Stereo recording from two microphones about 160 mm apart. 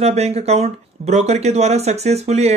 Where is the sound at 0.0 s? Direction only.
40° right (ahead or behind).